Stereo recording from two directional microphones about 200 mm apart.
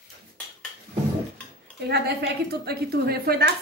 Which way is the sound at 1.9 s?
55° right (ahead or behind).